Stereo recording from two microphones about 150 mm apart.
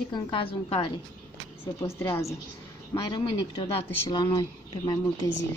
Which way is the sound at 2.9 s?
25° left (ahead or behind).